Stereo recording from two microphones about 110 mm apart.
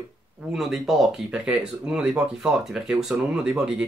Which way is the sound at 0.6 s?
5° right (ahead or behind).